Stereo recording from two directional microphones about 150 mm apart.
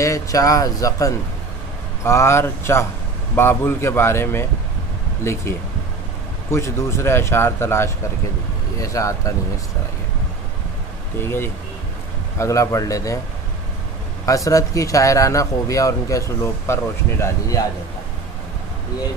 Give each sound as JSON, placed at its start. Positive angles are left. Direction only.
{"t": 0.0, "sound": "speech", "side_deg": 20}
{"t": 11.1, "sound": "speech", "side_deg": 15}
{"t": 14.2, "sound": "speech", "side_deg": 20}